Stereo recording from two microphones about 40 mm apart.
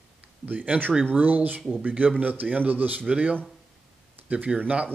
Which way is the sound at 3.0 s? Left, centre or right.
Right.